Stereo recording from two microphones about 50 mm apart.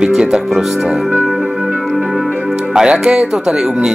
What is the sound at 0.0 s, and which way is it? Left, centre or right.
Speech, centre.